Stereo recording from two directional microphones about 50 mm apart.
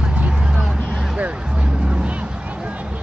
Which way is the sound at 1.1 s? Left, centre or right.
Right.